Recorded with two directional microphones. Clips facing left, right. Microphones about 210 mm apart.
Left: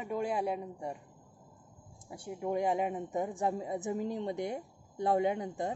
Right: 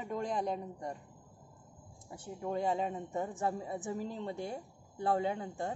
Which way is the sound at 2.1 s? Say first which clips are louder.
Left 3 dB; 10° left (ahead or behind).